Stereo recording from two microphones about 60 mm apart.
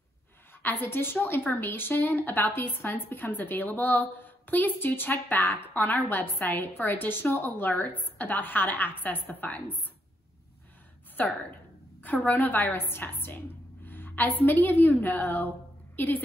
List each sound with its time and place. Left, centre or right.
0.6 s a woman's voice: left
11.2 s a woman's voice: left